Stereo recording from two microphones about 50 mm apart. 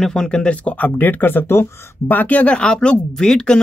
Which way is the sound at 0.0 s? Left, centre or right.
Centre.